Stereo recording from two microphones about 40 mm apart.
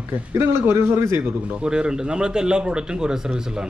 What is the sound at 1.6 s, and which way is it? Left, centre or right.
Speech, right.